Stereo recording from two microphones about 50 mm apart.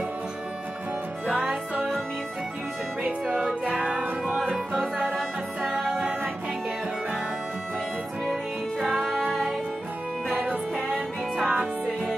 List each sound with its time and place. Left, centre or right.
3.0 s music: right; by 6.0 s centre
8.7 s music: centre
10.3 s music: right